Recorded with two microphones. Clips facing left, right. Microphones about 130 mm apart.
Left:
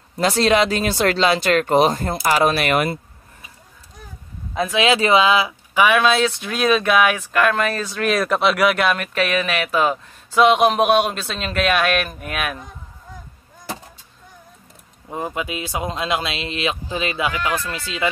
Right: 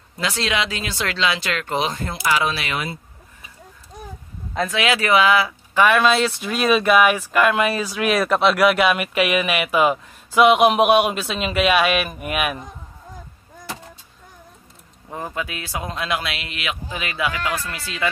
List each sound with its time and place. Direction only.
0.2 s speech: 40° left (ahead or behind)
4.7 s speech: 25° left (ahead or behind)
5.8 s speech: 5° left (ahead or behind)
15.0 s speech: 20° left (ahead or behind)